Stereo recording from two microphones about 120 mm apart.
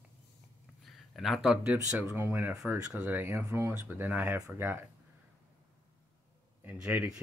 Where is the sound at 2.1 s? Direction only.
20° right (ahead or behind).